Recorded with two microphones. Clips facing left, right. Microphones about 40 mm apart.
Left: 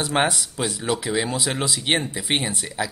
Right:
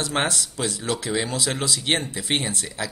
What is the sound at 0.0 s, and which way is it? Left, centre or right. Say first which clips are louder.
Speech: left 3 dB; centre.